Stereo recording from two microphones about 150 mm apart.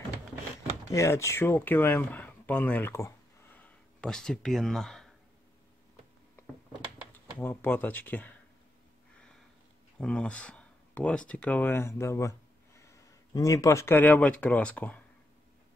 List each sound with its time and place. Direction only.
0.9 s speech: 20° left (ahead or behind); by 5.1 s 5° left (ahead or behind)
7.1 s speech: 15° left (ahead or behind)
9.9 s speech: 5° left (ahead or behind)